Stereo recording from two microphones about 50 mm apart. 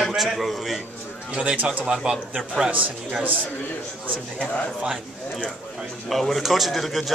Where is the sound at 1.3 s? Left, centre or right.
Right.